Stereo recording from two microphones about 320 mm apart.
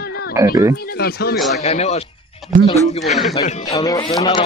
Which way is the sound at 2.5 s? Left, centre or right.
Right.